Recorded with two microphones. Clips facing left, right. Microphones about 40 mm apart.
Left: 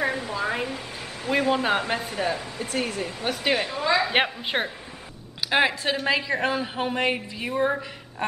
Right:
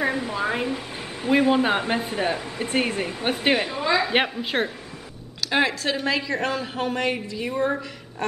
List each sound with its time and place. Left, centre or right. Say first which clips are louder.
0.0 s a sound: right 2 dB; centre
0.3 s speech: right 2 dB; centre
3.5 s a woman's voice: right 1 dB; centre
8.2 s quack: right 1 dB; left